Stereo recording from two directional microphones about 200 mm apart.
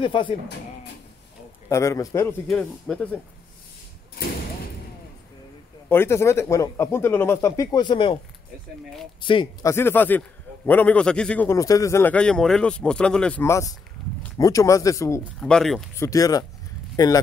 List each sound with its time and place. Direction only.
0.0 s speech: 25° left (ahead or behind)
1.7 s a man's voice: 15° left (ahead or behind)
5.9 s a man's voice: 10° left (ahead or behind)
9.2 s speech: 25° left (ahead or behind)
9.7 s a man's voice: 10° left (ahead or behind)
15.4 s speech: 5° left (ahead or behind)
16.0 s a man's voice: 15° left (ahead or behind)